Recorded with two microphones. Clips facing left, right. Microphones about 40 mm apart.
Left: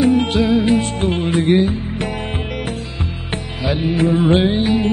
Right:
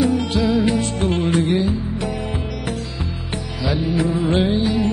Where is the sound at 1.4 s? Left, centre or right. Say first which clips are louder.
Left 4 dB; left.